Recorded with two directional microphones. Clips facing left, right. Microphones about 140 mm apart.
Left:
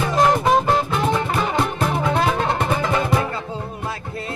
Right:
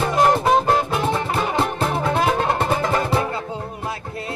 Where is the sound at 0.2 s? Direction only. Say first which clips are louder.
Even; 35° right (ahead or behind).